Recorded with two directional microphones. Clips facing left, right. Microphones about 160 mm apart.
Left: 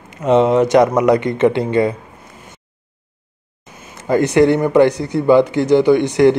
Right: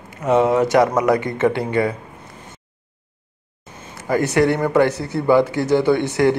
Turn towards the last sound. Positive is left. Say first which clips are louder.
# left 5 dB
turn(degrees=20)  # may be behind; listen again after turning